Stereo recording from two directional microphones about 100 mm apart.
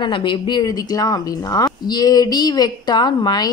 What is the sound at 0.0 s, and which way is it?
Speech, 50° left (ahead or behind).